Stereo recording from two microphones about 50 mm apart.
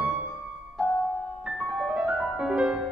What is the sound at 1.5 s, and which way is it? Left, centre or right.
Music, centre.